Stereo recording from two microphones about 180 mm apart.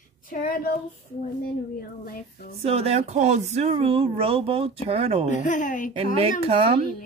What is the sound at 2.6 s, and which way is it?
Speech, 35° right (ahead or behind).